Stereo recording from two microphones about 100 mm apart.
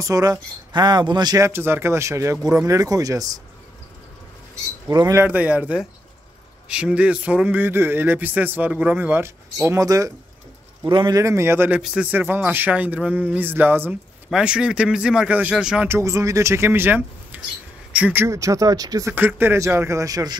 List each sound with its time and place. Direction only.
0.0 s speech: 35° right (ahead or behind)
1.4 s speech: 20° right (ahead or behind)
4.8 s speech: 35° right (ahead or behind)
5.2 s speech: 15° right (ahead or behind); by 10.1 s 35° right (ahead or behind)
10.8 s speech: 55° right (ahead or behind)
11.1 s speech: 30° right (ahead or behind)
11.8 s speech: 5° right (ahead or behind)
12.1 s speech: 20° right (ahead or behind)
14.3 s speech: 10° right (ahead or behind)
15.9 s speech: 30° right (ahead or behind); by 18.2 s 15° right (ahead or behind)
18.2 s speech: 30° right (ahead or behind)
19.0 s speech: 20° right (ahead or behind)